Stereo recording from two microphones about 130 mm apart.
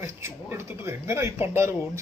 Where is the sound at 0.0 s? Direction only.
20° right (ahead or behind).